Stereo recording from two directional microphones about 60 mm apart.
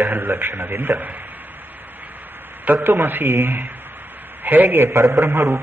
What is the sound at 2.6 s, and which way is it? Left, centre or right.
A man's voice, right.